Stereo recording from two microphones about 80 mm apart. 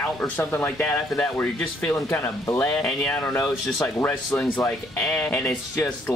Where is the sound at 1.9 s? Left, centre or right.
Left.